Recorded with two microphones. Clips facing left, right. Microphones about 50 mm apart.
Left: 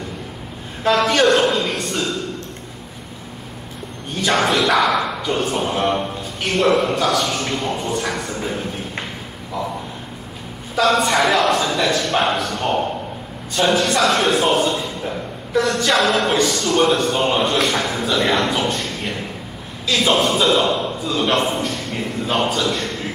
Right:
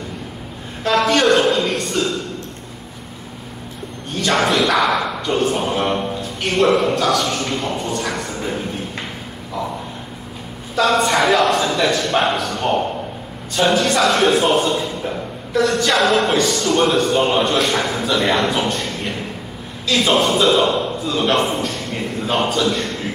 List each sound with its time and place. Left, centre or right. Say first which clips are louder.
0.8 s a man's voice: even; centre
4.1 s bow-wow: even; centre
4.4 s speech: even; centre
10.8 s a man's voice: even; centre